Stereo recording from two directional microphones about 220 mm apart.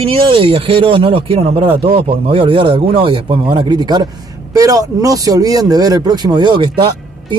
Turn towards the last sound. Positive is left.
turn(degrees=-20)  # may be behind; listen again after turning